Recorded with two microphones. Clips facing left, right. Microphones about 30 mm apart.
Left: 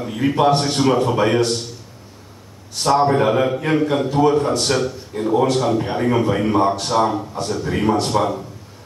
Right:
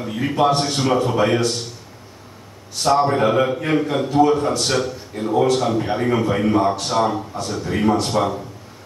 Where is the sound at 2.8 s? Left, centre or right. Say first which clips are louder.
Left 1 dB; centre.